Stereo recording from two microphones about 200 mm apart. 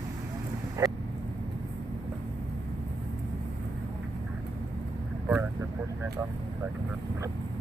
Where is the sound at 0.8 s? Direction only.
15° right (ahead or behind).